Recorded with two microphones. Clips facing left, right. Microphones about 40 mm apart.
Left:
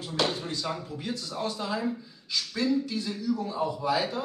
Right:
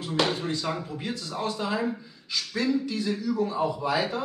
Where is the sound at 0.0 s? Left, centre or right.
Right.